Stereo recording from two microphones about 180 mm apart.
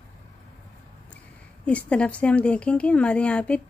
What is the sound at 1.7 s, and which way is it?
Speech, 5° left (ahead or behind).